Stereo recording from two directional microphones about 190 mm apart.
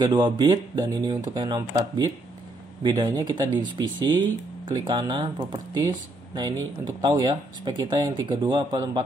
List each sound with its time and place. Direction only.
0.0 s speech: 25° right (ahead or behind)